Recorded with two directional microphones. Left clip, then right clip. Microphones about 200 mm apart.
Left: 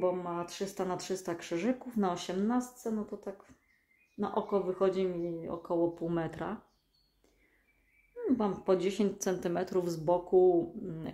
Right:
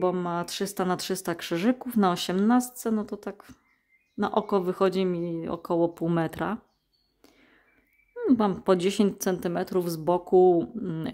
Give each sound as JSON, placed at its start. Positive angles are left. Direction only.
{"t": 0.0, "sound": "speech", "side_deg": -50}
{"t": 8.2, "sound": "speech", "side_deg": -45}